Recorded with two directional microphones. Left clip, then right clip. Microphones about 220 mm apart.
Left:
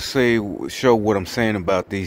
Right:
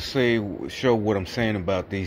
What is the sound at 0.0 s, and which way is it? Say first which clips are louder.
Speech: left 4 dB; 40° left (ahead or behind).